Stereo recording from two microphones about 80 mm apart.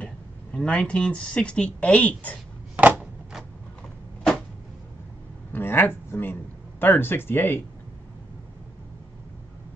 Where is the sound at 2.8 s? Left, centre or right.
Centre.